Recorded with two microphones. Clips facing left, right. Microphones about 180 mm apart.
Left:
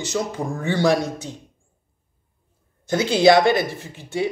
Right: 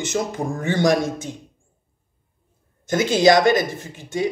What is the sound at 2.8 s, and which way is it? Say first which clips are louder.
Speech: even; 45° right (ahead or behind).